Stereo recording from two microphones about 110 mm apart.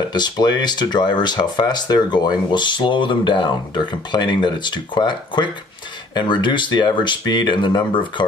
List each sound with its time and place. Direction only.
0.1 s speech: 40° left (ahead or behind)